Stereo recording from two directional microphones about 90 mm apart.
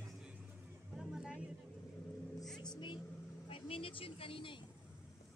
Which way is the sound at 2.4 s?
5° left (ahead or behind).